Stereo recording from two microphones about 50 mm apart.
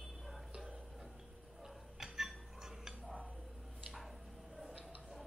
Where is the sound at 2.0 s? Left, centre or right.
Centre.